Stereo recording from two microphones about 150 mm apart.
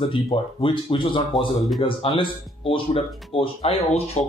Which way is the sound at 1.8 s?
35° left (ahead or behind).